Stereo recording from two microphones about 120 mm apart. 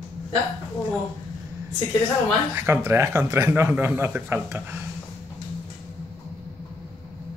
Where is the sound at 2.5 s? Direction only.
25° right (ahead or behind).